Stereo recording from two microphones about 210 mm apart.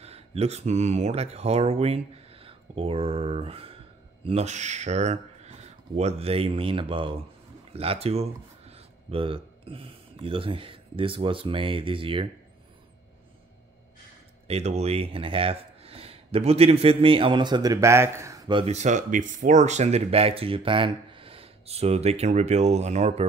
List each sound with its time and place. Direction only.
0.0 s speech: 30° right (ahead or behind)
14.5 s speech: 30° right (ahead or behind)